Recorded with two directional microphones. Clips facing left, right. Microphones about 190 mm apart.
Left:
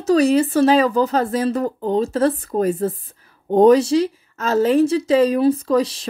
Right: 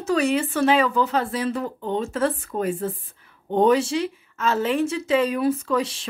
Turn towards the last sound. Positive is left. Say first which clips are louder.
# left 6 dB
turn(degrees=35)  # may be behind; listen again after turning